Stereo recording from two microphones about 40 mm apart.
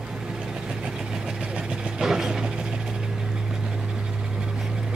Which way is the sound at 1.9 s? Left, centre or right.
Centre.